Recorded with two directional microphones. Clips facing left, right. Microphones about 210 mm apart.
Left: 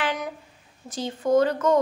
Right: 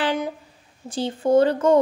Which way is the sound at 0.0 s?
30° right (ahead or behind).